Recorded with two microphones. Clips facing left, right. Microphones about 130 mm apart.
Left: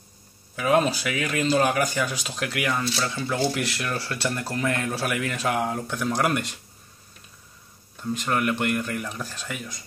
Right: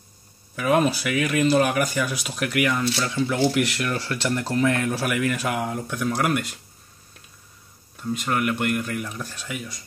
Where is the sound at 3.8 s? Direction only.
20° left (ahead or behind).